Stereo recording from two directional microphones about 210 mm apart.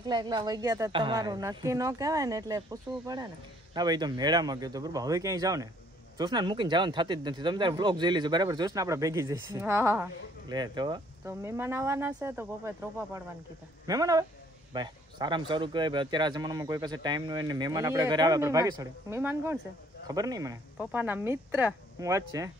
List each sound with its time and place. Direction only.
0.0 s speech: 20° right (ahead or behind)
10.5 s speech: 20° right (ahead or behind)